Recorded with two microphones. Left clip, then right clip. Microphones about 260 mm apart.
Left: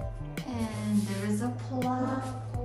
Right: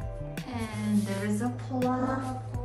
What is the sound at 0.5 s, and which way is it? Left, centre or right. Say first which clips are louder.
Music: even; centre.